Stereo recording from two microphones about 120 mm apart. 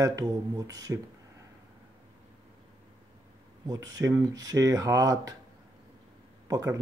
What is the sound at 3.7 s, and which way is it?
Speech, 30° right (ahead or behind).